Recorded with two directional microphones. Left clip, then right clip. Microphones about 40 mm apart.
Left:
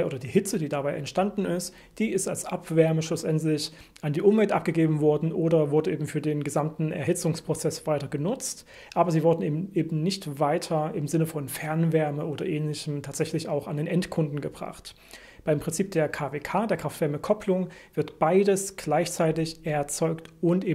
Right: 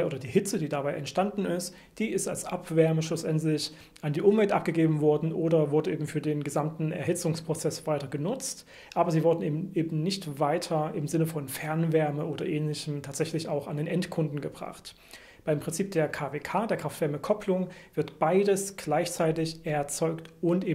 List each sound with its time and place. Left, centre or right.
0.0 s speech: left